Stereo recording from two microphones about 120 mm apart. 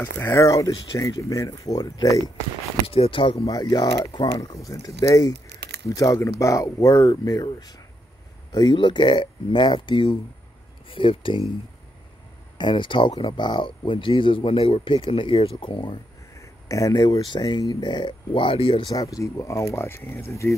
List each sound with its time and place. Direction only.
0.0 s speech: 20° left (ahead or behind)
2.9 s speech: 50° left (ahead or behind)
3.3 s speech: 30° left (ahead or behind); by 11.4 s 45° left (ahead or behind)
12.5 s speech: 40° left (ahead or behind)
16.3 s speech: 30° left (ahead or behind); by 18.9 s 45° left (ahead or behind)
18.9 s speech: 30° left (ahead or behind)